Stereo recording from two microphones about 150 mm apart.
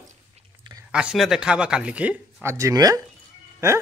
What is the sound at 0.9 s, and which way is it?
Speech, 5° right (ahead or behind).